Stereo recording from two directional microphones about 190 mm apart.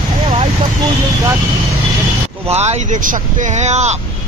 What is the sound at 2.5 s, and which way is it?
Speech, 35° right (ahead or behind).